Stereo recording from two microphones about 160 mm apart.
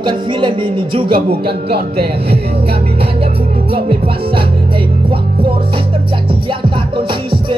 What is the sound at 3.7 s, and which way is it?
Music, 30° right (ahead or behind).